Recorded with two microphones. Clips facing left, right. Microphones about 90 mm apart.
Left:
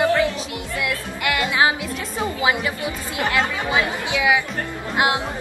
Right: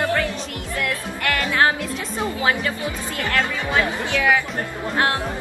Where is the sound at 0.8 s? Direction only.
10° left (ahead or behind).